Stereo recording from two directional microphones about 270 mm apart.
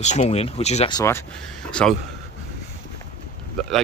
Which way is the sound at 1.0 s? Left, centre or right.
Centre.